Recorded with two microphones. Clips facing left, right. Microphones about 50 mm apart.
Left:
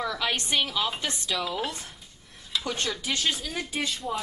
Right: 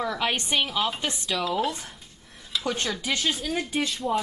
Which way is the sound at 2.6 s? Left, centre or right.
Centre.